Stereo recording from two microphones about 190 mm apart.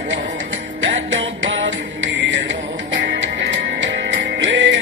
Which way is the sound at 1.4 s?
75° right (ahead or behind).